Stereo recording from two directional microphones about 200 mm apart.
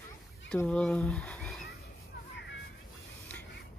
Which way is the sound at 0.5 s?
5° left (ahead or behind).